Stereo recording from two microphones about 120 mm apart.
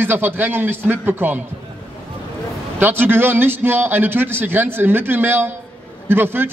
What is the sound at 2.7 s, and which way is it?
A man's voice, 15° right (ahead or behind).